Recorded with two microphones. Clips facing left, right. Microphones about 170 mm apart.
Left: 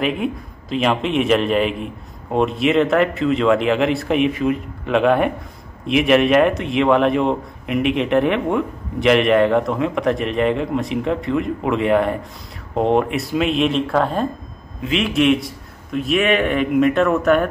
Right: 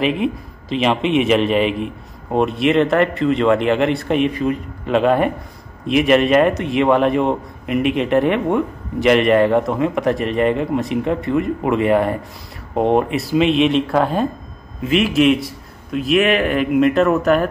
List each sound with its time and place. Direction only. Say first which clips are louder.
0.0 s a man's voice: right 2 dB; centre (ahead or behind)